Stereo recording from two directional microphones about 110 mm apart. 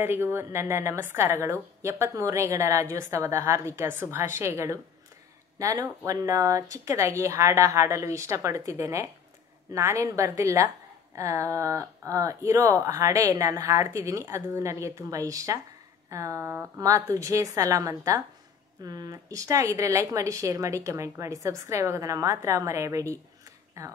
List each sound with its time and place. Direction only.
0.0 s speech: 20° right (ahead or behind)